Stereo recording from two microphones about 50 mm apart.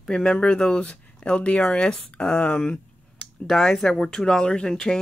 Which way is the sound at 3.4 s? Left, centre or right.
Centre.